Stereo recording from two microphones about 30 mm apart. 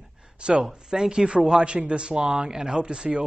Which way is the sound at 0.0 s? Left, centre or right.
Centre.